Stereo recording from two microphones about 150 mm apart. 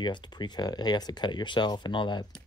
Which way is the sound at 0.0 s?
30° left (ahead or behind).